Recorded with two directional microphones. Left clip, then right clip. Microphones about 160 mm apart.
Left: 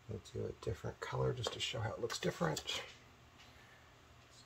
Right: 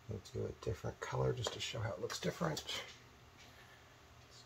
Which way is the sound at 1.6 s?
20° left (ahead or behind).